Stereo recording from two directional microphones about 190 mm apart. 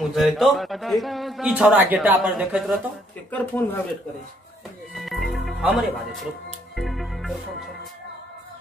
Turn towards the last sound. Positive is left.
turn(degrees=0)  # may be behind; listen again after turning